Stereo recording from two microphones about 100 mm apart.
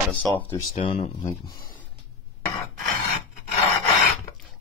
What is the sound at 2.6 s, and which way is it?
Filing, 35° left (ahead or behind).